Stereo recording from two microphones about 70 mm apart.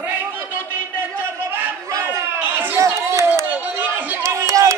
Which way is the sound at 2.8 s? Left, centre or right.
Right.